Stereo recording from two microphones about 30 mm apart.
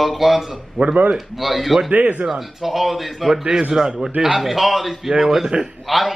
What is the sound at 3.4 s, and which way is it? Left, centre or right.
Speech, right.